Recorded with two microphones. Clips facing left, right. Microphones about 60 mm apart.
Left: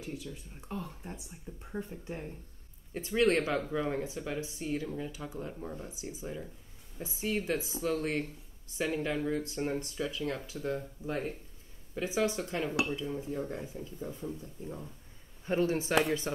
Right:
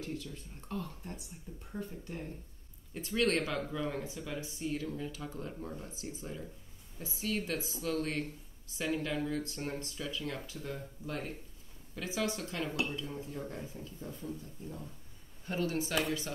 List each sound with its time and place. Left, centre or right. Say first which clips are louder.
0.0 s speech: even; centre
15.4 s speech: left 5 dB; left